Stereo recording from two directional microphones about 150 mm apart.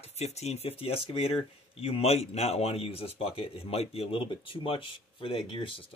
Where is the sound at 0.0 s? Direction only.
45° left (ahead or behind).